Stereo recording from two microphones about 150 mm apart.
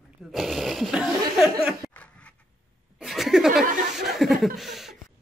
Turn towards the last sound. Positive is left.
turn(degrees=0)  # may be behind; listen again after turning